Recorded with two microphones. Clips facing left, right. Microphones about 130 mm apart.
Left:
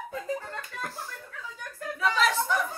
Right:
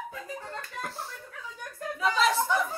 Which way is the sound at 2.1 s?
35° right (ahead or behind).